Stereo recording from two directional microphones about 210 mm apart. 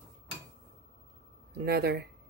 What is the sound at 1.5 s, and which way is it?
Speech, 50° right (ahead or behind).